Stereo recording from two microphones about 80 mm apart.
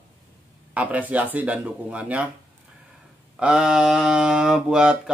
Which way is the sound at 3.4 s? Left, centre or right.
Centre.